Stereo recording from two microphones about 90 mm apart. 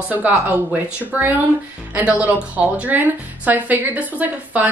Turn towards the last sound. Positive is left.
turn(degrees=-15)  # may be behind; listen again after turning